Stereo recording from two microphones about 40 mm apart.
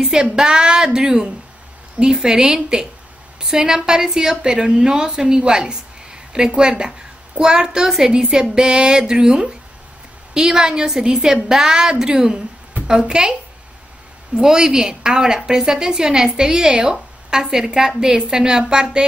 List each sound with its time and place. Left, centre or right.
0.0 s a woman's voice: centre